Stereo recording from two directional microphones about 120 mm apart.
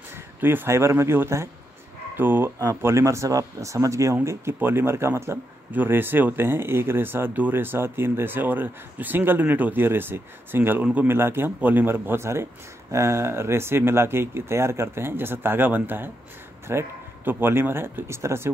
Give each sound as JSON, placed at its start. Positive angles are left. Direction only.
{"t": 0.1, "sound": "speech", "side_deg": -15}